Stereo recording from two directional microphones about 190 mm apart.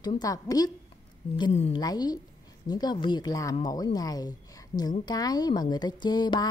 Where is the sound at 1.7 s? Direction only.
20° left (ahead or behind).